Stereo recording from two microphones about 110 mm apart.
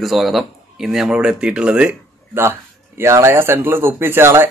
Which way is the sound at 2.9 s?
25° right (ahead or behind).